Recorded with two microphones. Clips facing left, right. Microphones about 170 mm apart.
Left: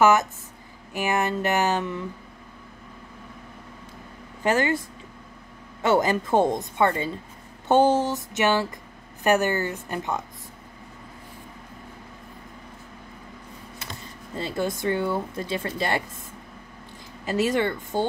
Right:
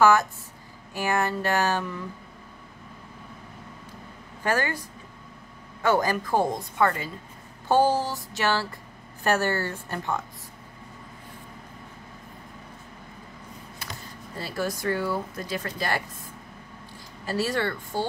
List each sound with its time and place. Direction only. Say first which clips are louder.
0.0 s a woman's voice: left 1 dB; 20° left (ahead or behind)
4.4 s speech: left 4 dB; 20° left (ahead or behind)
5.8 s a woman's voice: left 2 dB; 20° left (ahead or behind)
14.3 s a woman's voice: left 3 dB; 20° left (ahead or behind)
17.3 s a woman's voice: left 4 dB; 20° left (ahead or behind)